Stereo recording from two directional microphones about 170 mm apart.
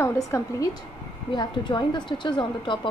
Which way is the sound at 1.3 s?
25° left (ahead or behind).